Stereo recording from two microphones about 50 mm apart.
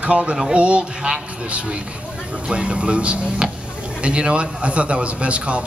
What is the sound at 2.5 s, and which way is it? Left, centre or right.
A man's voice, right.